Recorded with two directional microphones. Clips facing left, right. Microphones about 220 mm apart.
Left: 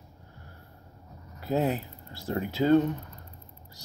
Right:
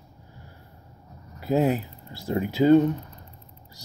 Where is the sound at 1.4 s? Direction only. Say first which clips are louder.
Right 5 dB; 10° right (ahead or behind).